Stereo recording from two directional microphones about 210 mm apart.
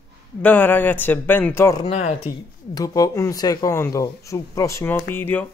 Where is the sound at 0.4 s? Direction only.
10° left (ahead or behind).